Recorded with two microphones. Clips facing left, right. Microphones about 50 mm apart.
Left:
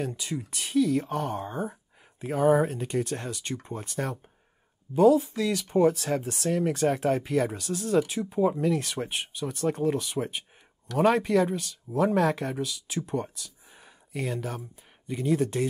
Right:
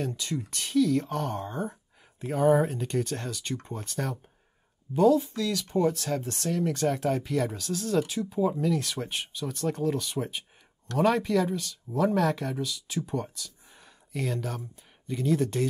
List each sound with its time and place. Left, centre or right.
0.0 s speech: centre
8.2 s speech: left